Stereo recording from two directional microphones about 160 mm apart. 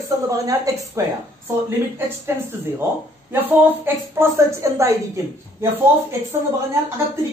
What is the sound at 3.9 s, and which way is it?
A woman's voice, 15° right (ahead or behind).